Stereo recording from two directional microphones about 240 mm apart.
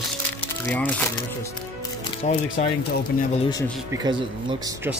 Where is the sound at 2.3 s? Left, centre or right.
Left.